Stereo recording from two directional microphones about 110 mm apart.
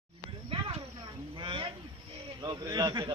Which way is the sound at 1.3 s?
50° right (ahead or behind).